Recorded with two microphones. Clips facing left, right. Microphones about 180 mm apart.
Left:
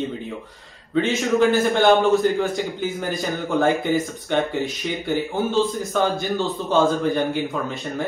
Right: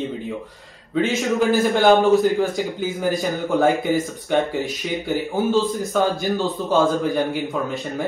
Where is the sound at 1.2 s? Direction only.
Centre (ahead or behind).